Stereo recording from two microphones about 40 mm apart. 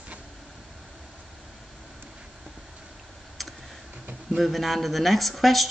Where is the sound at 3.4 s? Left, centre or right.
Centre.